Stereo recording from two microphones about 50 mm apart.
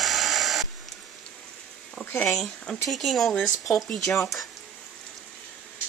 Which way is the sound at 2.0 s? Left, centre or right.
Left.